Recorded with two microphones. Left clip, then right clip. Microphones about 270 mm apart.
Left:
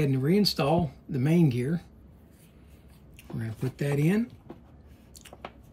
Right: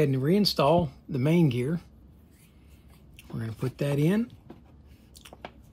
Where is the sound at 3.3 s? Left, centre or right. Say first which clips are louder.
Right 2 dB; centre.